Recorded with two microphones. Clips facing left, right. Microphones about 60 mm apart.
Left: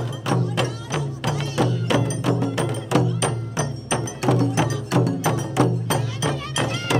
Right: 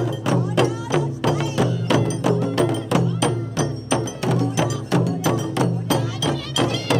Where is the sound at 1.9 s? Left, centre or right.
Centre.